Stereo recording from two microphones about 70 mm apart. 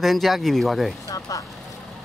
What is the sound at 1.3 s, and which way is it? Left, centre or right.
Speech, left.